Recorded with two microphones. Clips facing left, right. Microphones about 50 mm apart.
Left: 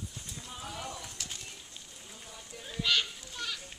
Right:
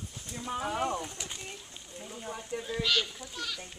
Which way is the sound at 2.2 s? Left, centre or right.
Right.